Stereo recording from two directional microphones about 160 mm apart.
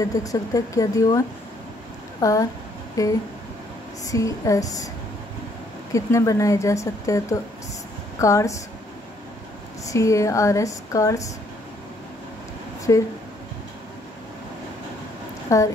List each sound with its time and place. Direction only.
0.0 s speech: 20° left (ahead or behind)
5.9 s speech: 20° left (ahead or behind)
9.8 s speech: 20° left (ahead or behind)
12.9 s speech: 20° left (ahead or behind)
15.5 s speech: 20° left (ahead or behind)